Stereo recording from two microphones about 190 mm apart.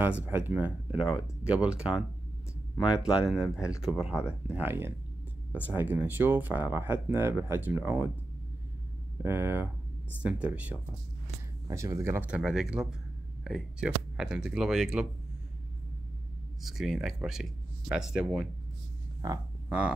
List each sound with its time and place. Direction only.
0.0 s speech: 10° right (ahead or behind)
9.2 s speech: 10° right (ahead or behind)
16.6 s speech: centre (ahead or behind)
19.2 s speech: 20° right (ahead or behind)